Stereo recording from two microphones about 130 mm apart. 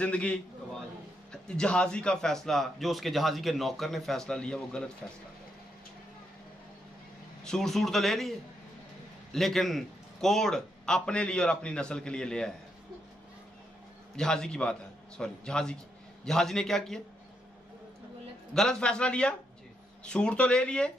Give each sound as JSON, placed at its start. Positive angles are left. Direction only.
{"t": 0.0, "sound": "a man's voice", "side_deg": 10}
{"t": 7.4, "sound": "a man's voice", "side_deg": 5}
{"t": 14.1, "sound": "a man's voice", "side_deg": 5}
{"t": 18.5, "sound": "speech", "side_deg": 5}